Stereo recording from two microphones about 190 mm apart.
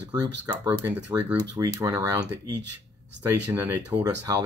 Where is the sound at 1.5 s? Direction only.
20° right (ahead or behind).